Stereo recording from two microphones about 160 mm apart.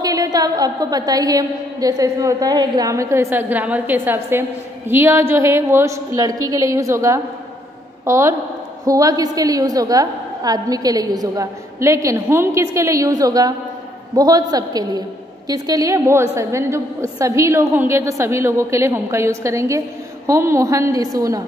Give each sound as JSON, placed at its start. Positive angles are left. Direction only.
{"t": 0.0, "sound": "a woman's voice", "side_deg": -25}